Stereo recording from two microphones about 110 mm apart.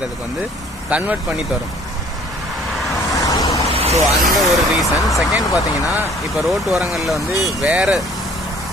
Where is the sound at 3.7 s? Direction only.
60° right (ahead or behind).